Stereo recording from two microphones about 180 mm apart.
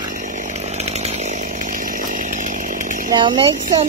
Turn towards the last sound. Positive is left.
turn(degrees=-30)  # may be behind; listen again after turning